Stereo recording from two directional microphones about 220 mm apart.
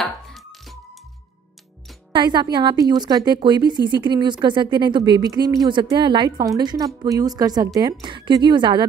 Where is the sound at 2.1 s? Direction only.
20° right (ahead or behind).